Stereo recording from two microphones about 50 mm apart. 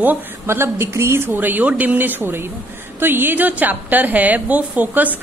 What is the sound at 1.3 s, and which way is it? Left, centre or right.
A woman's voice, right.